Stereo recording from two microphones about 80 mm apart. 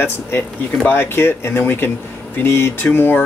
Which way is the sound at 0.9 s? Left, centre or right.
Left.